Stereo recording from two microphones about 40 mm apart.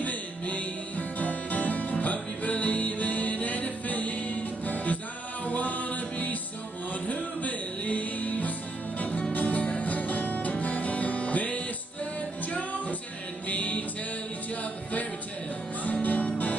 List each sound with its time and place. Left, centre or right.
0.0 s music: left
13.5 s music: left